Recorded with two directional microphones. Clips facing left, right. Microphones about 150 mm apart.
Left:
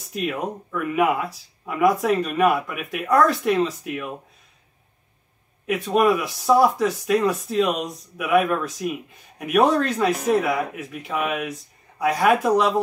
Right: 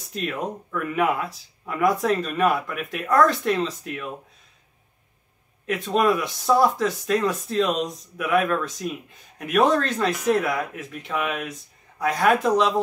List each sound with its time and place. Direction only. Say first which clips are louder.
0.1 s speech: left 2 dB; 5° left (ahead or behind)
5.7 s speech: left 2 dB; 10° left (ahead or behind)